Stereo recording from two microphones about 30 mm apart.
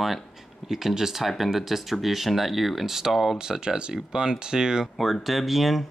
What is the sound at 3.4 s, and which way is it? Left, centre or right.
Speech, right.